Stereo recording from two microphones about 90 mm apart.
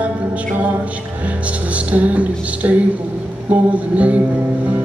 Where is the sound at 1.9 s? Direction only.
15° right (ahead or behind).